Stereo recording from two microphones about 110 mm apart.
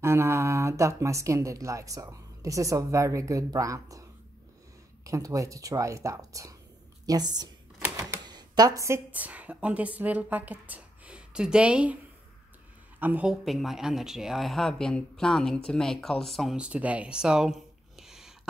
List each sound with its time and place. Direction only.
0.0 s speech: 25° right (ahead or behind)
5.0 s speech: 30° right (ahead or behind)
8.3 s a sound: 40° right (ahead or behind)
9.1 s a woman's voice: 15° right (ahead or behind)
13.0 s a woman's voice: 15° right (ahead or behind)
13.3 s speech: centre (ahead or behind)